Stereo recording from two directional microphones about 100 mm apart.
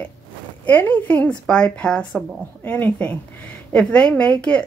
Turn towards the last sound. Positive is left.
turn(degrees=10)  # may be behind; listen again after turning